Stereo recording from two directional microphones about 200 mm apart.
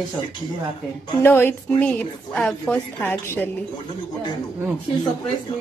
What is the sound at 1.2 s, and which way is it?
A woman's voice, 10° left (ahead or behind).